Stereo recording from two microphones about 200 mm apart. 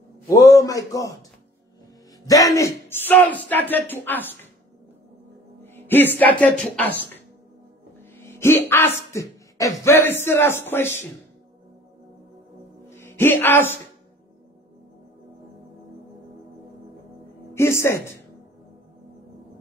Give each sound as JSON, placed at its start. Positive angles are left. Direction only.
{"t": 0.3, "sound": "speech", "side_deg": 15}
{"t": 2.2, "sound": "speech", "side_deg": 15}
{"t": 5.6, "sound": "speech", "side_deg": 10}
{"t": 8.3, "sound": "speech", "side_deg": 10}
{"t": 12.9, "sound": "music", "side_deg": 10}
{"t": 17.6, "sound": "music", "side_deg": 15}